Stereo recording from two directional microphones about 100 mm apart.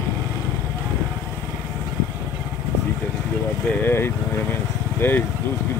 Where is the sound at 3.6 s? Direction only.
20° left (ahead or behind).